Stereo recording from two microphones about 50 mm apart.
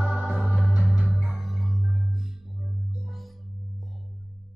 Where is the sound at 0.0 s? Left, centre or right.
Right.